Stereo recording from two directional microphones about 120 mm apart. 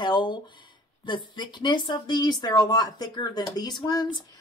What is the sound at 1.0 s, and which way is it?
Speech, 40° left (ahead or behind).